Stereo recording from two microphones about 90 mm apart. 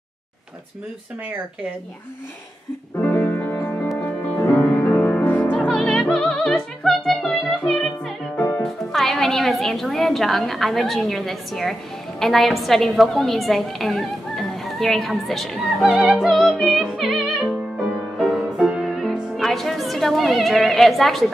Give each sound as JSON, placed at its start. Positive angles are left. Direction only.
{"t": 3.0, "sound": "music", "side_deg": 20}
{"t": 8.4, "sound": "music", "side_deg": 25}
{"t": 8.6, "sound": "a woman's voice", "side_deg": 0}
{"t": 18.1, "sound": "music", "side_deg": -5}